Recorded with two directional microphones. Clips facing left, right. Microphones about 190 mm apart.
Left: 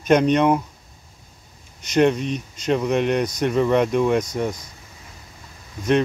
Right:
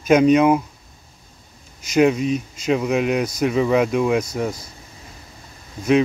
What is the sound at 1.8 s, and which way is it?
Speech, 5° right (ahead or behind).